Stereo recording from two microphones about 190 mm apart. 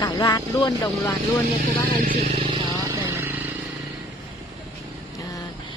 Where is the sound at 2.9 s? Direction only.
15° right (ahead or behind).